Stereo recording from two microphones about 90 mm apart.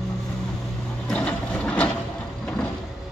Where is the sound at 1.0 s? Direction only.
15° left (ahead or behind).